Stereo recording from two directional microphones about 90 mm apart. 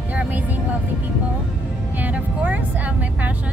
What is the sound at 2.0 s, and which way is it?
Speech, 20° right (ahead or behind).